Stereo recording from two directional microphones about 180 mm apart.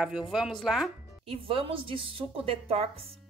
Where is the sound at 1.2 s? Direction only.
30° right (ahead or behind).